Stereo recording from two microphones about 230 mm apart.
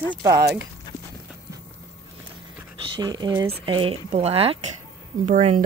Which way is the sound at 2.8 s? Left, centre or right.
Centre.